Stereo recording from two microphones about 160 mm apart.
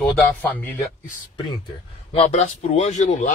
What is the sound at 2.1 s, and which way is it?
Speech, 40° left (ahead or behind).